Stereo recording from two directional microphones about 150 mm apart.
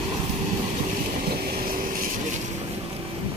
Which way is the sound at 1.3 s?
70° right (ahead or behind).